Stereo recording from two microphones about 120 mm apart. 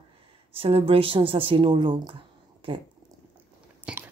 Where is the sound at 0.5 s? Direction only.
50° right (ahead or behind).